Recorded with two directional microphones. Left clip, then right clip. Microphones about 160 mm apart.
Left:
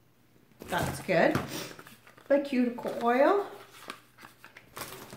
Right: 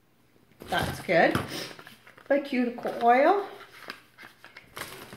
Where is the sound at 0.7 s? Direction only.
25° left (ahead or behind).